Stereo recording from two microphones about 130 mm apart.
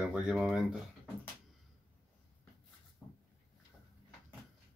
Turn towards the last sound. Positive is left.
turn(degrees=15)  # may be behind; listen again after turning